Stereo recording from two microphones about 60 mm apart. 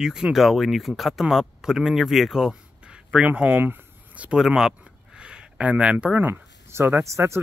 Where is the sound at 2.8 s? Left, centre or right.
Centre.